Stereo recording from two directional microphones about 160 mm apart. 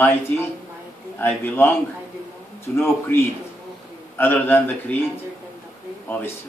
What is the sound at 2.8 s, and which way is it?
A man's voice, 15° left (ahead or behind).